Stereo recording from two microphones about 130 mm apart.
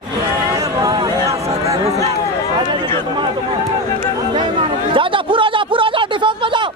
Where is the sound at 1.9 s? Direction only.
55° right (ahead or behind).